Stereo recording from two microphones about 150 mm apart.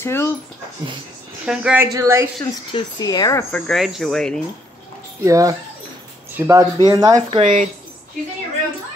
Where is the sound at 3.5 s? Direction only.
5° left (ahead or behind).